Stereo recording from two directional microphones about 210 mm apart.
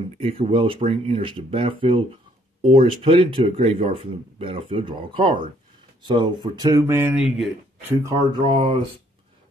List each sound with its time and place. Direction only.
0.2 s speech: 25° right (ahead or behind); by 7.4 s 5° right (ahead or behind)
8.0 s speech: 15° right (ahead or behind)